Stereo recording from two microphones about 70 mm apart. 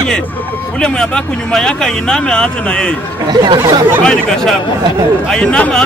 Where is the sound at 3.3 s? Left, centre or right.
Right.